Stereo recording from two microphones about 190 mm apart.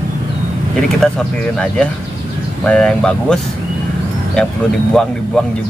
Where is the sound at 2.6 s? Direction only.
5° left (ahead or behind).